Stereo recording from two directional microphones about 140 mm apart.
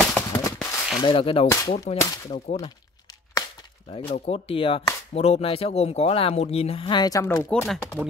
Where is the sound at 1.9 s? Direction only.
65° left (ahead or behind).